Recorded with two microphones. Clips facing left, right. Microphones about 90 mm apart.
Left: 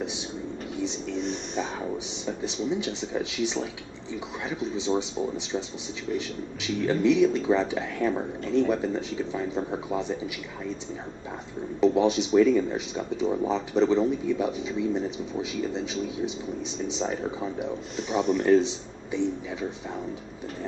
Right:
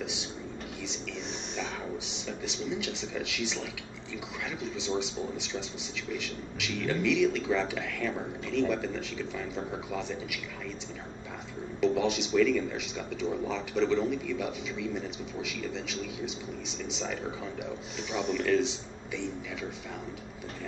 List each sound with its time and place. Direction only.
0.7 s music: 35° left (ahead or behind)
2.2 s speech: 35° left (ahead or behind)
11.8 s speech: 30° left (ahead or behind)